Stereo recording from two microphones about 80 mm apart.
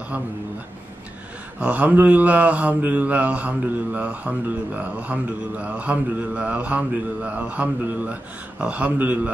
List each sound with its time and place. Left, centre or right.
1.6 s speech: centre